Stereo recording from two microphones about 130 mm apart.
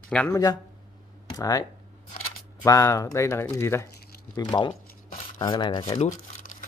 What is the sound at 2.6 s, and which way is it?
Speech, 25° left (ahead or behind).